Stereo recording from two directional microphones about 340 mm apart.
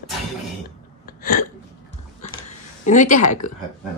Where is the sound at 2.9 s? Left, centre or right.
Left.